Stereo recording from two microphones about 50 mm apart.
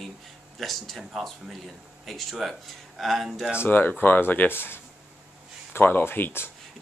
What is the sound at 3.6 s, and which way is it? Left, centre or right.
Speech, left.